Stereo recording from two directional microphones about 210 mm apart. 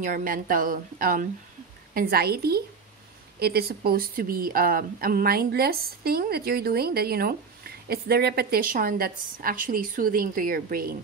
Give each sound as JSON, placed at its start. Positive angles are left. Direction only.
{"t": 0.0, "sound": "a woman's voice", "side_deg": -40}